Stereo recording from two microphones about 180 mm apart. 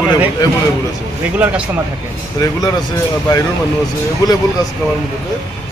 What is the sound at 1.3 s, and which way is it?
Speech, 10° right (ahead or behind).